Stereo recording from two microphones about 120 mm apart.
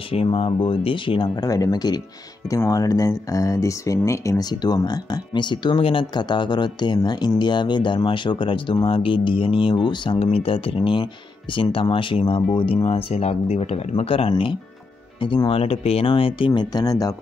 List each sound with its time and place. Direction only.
0.1 s speech: 50° left (ahead or behind)
16.7 s speech: 30° left (ahead or behind)